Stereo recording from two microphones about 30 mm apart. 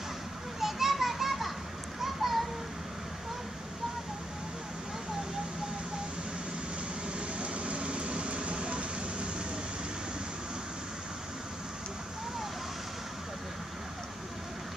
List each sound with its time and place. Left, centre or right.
0.6 s children playing: centre
7.2 s vehicle: right